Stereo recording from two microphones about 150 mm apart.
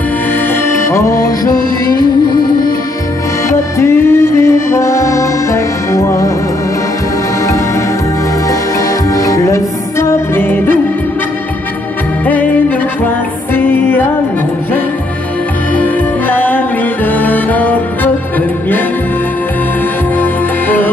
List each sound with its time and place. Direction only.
0.7 s music: 20° left (ahead or behind)
3.4 s music: 15° left (ahead or behind)
9.1 s music: 20° left (ahead or behind)
12.3 s music: 10° left (ahead or behind)
15.7 s music: 10° left (ahead or behind)
20.2 s music: 10° left (ahead or behind)